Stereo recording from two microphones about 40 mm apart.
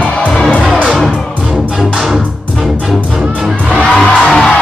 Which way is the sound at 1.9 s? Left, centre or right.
Centre.